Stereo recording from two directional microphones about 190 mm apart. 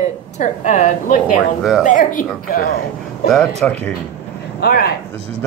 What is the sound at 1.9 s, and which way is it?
Speech, 40° left (ahead or behind).